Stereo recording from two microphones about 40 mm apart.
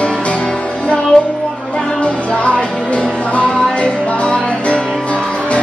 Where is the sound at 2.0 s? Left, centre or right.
Left.